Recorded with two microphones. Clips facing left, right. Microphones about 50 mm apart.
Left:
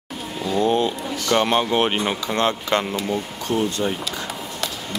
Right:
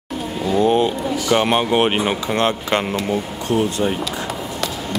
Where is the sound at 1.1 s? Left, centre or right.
Centre.